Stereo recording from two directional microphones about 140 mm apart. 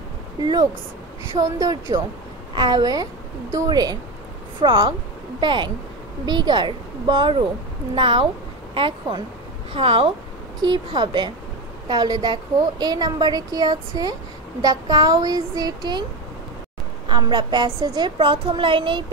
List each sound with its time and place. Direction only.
1.6 s a woman's voice: 30° right (ahead or behind)
17.1 s a woman's voice: 30° right (ahead or behind)